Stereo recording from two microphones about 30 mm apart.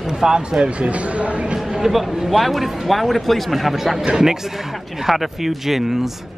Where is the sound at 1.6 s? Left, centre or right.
Centre.